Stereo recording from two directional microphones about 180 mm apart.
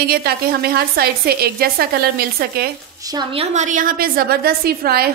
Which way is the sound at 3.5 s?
45° right (ahead or behind).